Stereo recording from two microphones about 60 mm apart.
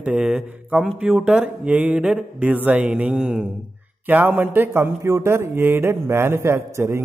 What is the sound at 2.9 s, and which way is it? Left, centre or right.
Speech, centre.